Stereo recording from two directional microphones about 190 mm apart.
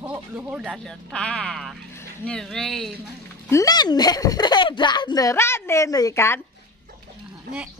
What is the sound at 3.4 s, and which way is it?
Speech, 15° left (ahead or behind).